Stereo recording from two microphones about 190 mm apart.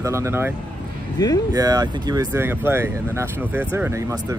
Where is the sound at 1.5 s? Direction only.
20° right (ahead or behind).